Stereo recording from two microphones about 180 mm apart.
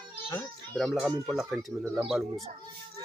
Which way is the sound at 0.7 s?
Centre (ahead or behind).